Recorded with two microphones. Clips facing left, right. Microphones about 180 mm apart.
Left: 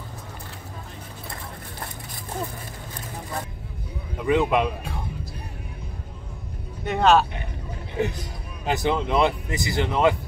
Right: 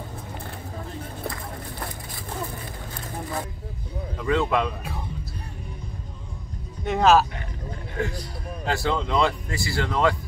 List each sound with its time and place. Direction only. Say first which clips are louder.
4.2 s speech: left 2 dB; 15° left (ahead or behind)
6.8 s speech: even; centre (ahead or behind)
8.0 s speech: left 3 dB; 20° left (ahead or behind)